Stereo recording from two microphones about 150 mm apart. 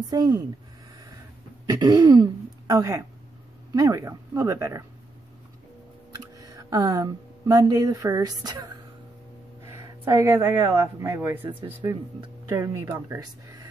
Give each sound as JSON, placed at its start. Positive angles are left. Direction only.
{"t": 0.1, "sound": "speech", "side_deg": -25}
{"t": 1.7, "sound": "speech", "side_deg": -30}
{"t": 6.3, "sound": "speech", "side_deg": -25}